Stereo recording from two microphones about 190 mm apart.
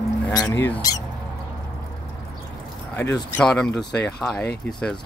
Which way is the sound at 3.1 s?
5° left (ahead or behind).